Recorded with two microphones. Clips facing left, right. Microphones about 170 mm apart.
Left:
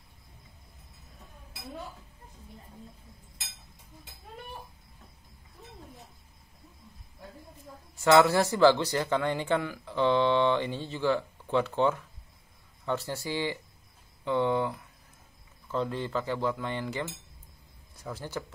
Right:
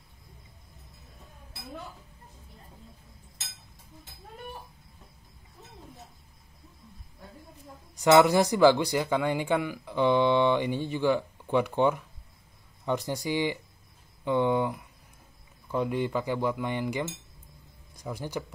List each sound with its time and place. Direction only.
7.9 s speech: 15° right (ahead or behind)